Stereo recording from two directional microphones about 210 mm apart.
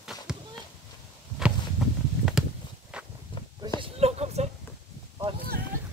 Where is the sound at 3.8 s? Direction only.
30° right (ahead or behind).